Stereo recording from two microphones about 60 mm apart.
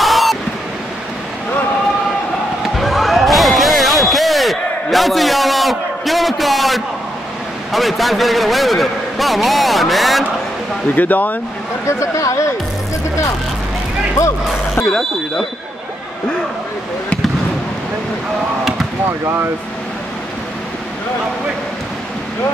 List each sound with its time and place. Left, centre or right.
0.0 s waves: centre
2.8 s a sound: centre
7.7 s a man's voice: centre
11.0 s speech: left
12.0 s speech: left
14.9 s speech: centre